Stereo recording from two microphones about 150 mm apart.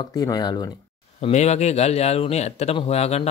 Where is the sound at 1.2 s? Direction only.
45° left (ahead or behind).